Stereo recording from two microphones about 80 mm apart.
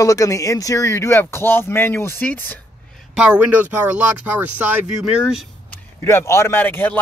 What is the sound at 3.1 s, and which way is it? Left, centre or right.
Speech, centre.